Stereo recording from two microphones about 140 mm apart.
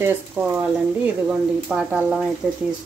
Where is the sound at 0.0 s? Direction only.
15° right (ahead or behind).